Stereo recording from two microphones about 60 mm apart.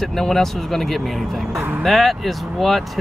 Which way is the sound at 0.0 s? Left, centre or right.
Centre.